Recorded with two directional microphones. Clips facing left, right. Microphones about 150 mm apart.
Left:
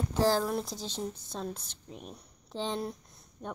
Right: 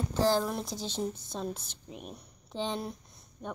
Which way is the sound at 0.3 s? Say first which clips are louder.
Even; 5° left (ahead or behind).